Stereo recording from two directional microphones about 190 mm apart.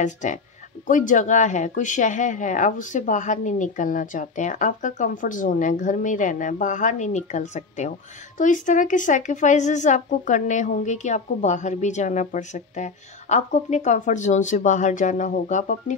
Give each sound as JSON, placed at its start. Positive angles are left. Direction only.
{"t": 0.0, "sound": "a woman's voice", "side_deg": 40}